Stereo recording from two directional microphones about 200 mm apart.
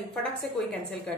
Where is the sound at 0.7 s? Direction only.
5° left (ahead or behind).